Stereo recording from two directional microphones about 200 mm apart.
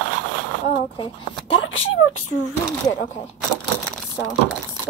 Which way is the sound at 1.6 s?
80° left.